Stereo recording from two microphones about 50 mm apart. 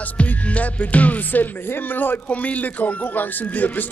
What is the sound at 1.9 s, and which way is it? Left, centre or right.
Speech, left.